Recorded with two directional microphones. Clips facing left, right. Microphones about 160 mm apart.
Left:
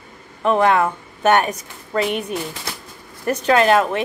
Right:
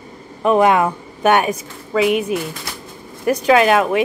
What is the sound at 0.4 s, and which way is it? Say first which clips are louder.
A woman's voice: right 3 dB; 15° right (ahead or behind).